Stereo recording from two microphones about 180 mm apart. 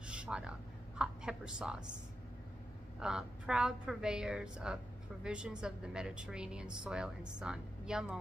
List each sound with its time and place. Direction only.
0.0 s a sound: 5° right (ahead or behind)
0.9 s a woman's voice: 5° right (ahead or behind)
3.0 s a woman's voice: 5° right (ahead or behind)